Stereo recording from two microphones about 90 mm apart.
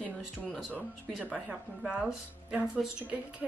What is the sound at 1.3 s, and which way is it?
Speech, 15° right (ahead or behind).